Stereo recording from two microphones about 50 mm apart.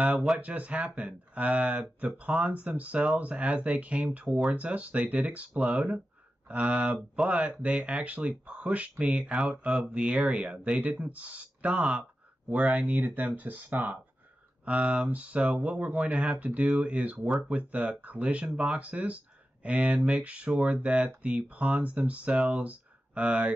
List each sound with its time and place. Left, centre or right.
0.0 s speech: right
13.0 s speech: right